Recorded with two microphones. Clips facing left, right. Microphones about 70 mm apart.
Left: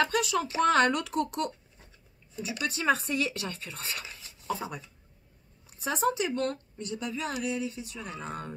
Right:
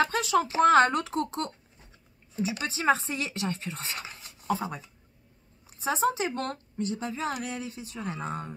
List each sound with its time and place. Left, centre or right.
0.0 s speech: right
4.1 s cutlery: right
4.6 s speech: right